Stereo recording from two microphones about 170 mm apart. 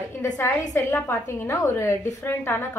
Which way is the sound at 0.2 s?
15° left (ahead or behind).